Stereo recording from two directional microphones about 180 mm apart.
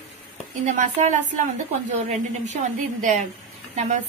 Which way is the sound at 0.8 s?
45° right (ahead or behind).